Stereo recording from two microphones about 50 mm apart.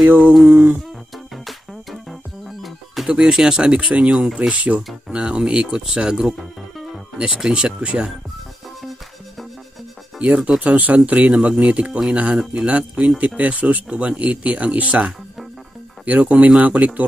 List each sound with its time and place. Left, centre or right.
0.5 s a sound: right
1.3 s music: centre
3.1 s speech: centre
4.4 s speech: right
7.3 s speech: centre
10.2 s speech: right